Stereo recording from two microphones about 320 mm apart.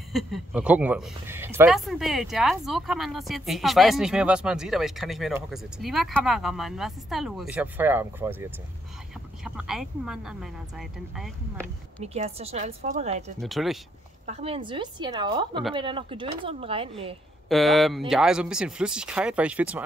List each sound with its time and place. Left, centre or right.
0.1 s speech: centre
12.0 s a woman's voice: centre
13.4 s speech: centre
14.2 s speech: centre
17.5 s speech: centre